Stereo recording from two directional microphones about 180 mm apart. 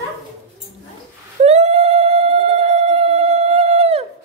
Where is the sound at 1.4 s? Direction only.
35° right (ahead or behind).